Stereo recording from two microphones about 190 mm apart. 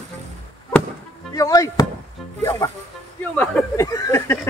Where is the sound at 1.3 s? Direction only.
20° left (ahead or behind).